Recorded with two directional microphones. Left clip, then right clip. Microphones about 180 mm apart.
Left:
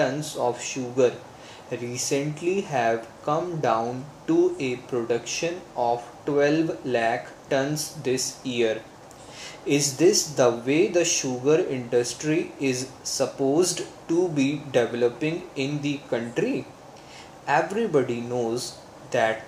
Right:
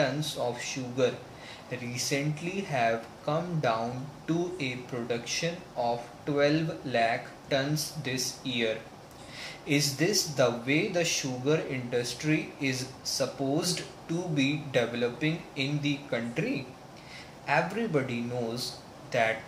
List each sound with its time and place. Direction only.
0.0 s speech: 25° left (ahead or behind)
9.7 s speech: 25° left (ahead or behind)